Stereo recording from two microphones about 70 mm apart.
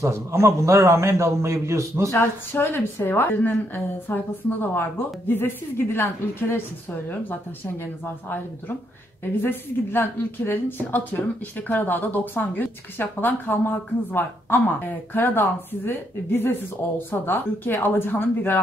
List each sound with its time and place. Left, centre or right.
0.0 s a man's voice: right
2.0 s a woman's voice: left
7.8 s a woman's voice: left